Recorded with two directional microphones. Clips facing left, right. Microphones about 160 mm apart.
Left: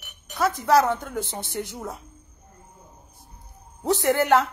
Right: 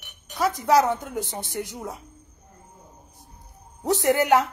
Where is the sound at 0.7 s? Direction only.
15° right (ahead or behind).